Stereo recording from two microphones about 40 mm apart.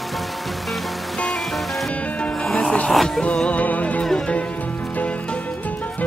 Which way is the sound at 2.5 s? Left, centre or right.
Centre.